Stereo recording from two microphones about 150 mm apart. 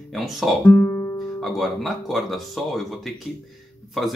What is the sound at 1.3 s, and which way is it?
Speech, centre (ahead or behind).